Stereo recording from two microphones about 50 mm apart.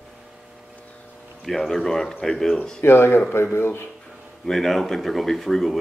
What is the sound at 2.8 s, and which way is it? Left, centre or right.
Speech, left.